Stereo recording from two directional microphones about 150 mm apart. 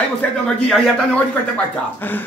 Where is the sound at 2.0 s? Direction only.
10° left (ahead or behind).